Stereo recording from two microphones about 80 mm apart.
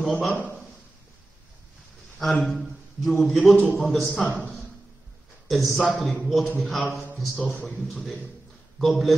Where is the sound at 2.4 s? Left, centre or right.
Centre.